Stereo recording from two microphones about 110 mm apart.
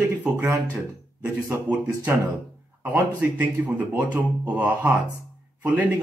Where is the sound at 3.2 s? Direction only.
15° right (ahead or behind).